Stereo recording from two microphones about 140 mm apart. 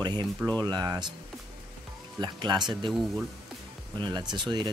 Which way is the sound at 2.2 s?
30° right (ahead or behind).